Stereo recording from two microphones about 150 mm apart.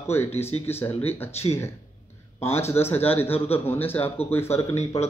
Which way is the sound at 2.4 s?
15° left (ahead or behind).